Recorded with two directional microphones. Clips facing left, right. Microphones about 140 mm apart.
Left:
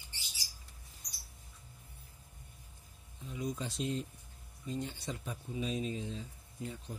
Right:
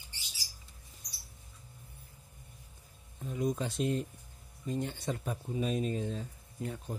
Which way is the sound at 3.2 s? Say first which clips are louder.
Right 6 dB; 50° right (ahead or behind).